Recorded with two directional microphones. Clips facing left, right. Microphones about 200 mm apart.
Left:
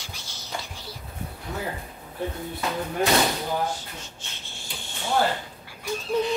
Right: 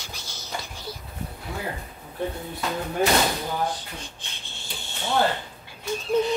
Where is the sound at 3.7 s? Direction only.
15° right (ahead or behind).